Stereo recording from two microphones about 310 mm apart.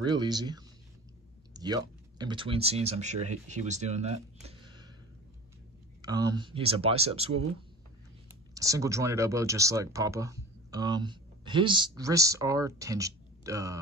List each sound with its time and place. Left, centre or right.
0.0 s speech: centre
6.0 s speech: centre
8.5 s speech: centre